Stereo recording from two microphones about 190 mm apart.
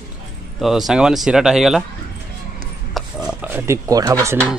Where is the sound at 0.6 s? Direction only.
Centre (ahead or behind).